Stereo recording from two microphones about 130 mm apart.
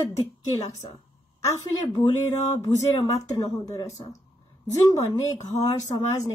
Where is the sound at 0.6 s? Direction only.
25° left (ahead or behind).